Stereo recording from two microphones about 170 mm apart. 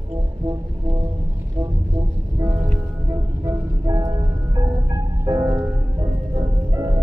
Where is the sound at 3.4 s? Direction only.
20° right (ahead or behind).